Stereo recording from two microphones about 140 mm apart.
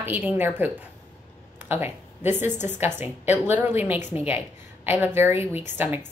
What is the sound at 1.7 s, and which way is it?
A woman's voice, 15° right (ahead or behind).